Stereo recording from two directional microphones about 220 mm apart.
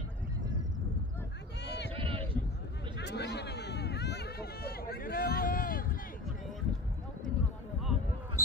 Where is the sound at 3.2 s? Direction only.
50° left (ahead or behind).